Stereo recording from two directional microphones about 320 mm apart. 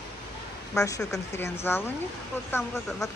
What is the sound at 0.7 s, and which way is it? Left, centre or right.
Speech, centre.